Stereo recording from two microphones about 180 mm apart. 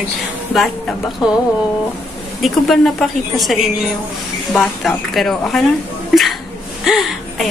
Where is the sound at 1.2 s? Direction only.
Centre (ahead or behind).